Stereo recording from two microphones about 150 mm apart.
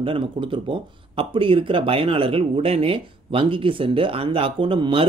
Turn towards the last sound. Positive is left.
turn(degrees=-35)  # may be behind; listen again after turning